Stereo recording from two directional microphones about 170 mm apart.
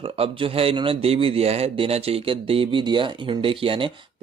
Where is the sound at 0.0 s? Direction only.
35° right (ahead or behind).